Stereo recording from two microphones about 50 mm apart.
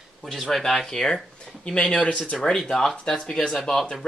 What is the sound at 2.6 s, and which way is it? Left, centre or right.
Speech, centre.